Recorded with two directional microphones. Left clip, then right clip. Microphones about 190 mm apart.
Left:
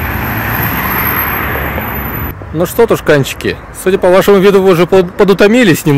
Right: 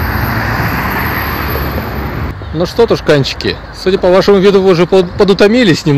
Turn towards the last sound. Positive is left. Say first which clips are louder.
# left 1 dB
turn(degrees=5)  # may be behind; listen again after turning